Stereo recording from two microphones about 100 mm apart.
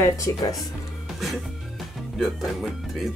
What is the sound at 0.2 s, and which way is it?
Speech, 35° left (ahead or behind).